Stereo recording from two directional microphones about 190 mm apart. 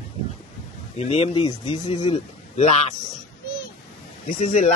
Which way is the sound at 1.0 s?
35° left (ahead or behind).